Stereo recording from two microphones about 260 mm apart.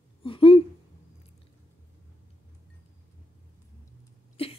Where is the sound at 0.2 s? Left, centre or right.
Left.